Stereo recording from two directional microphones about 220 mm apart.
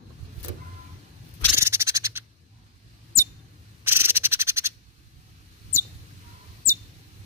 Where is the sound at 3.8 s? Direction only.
10° right (ahead or behind).